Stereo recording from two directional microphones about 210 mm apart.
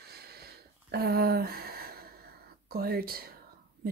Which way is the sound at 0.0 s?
50° right (ahead or behind).